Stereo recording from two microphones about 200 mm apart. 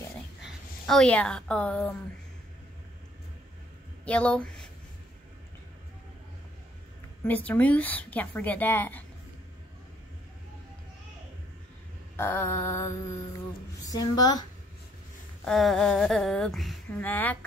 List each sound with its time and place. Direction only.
0.4 s a woman's voice: centre (ahead or behind)
4.0 s speech: 5° left (ahead or behind)
7.2 s speech: 10° left (ahead or behind)
12.2 s a woman's voice: 10° left (ahead or behind)
15.4 s speech: centre (ahead or behind)